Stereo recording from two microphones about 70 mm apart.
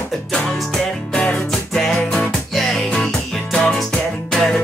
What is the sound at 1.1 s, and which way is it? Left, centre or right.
Music, centre.